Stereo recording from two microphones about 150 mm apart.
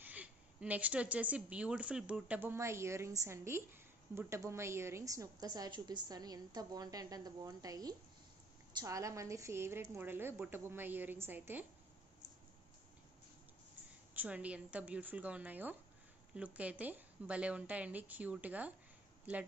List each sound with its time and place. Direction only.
0.0 s a woman's voice: 10° right (ahead or behind)
14.1 s a woman's voice: 10° right (ahead or behind)